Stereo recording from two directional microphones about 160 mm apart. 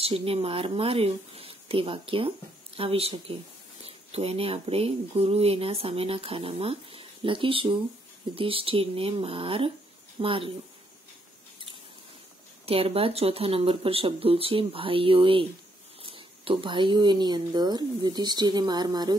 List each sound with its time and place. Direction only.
0.0 s speech: 35° right (ahead or behind)
12.6 s speech: 35° right (ahead or behind)